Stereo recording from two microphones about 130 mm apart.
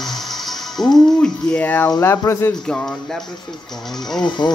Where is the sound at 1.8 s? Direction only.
20° left (ahead or behind).